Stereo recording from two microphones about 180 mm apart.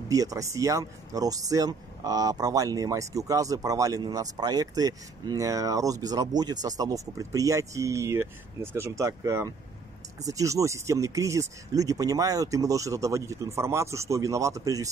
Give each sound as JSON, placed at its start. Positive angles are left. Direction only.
{"t": 0.1, "sound": "speech", "side_deg": -20}